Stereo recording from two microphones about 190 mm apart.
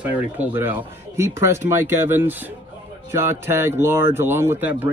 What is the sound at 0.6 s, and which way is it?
A man's voice, 10° right (ahead or behind).